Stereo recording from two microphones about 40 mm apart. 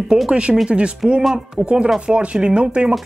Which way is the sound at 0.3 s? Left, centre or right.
Right.